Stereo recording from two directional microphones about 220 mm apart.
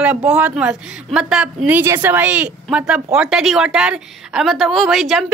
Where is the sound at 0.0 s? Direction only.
5° right (ahead or behind).